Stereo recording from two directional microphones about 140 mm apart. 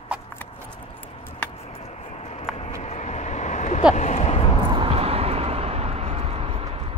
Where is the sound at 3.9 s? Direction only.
55° left (ahead or behind).